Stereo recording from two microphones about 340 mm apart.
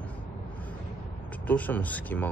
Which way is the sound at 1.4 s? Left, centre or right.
Centre.